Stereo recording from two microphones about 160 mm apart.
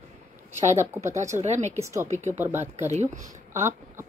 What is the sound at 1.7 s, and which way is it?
Speech, 15° right (ahead or behind).